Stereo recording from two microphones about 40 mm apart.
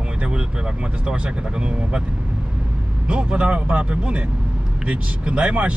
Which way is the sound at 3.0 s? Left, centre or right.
Right.